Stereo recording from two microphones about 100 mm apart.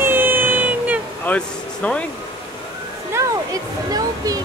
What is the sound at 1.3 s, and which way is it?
Speech, 15° left (ahead or behind).